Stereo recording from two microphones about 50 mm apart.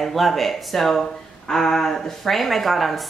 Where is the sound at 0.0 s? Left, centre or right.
Centre.